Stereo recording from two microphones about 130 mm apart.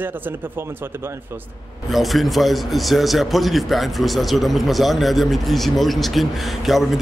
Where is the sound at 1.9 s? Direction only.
Centre (ahead or behind).